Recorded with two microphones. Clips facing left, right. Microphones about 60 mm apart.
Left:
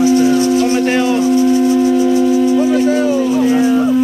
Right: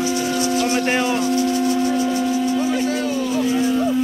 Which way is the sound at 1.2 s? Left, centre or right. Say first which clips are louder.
Left 7 dB; centre.